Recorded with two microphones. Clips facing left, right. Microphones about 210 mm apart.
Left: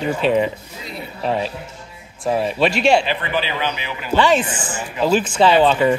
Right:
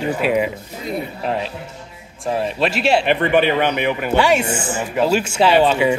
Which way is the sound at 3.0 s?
60° right (ahead or behind).